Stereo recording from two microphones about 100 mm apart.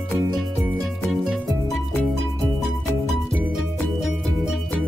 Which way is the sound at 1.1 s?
Centre (ahead or behind).